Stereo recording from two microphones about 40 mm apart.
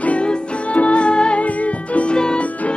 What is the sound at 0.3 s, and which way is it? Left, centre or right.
Music, left.